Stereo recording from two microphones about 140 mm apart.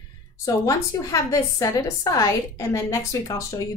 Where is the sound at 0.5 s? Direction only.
25° left (ahead or behind).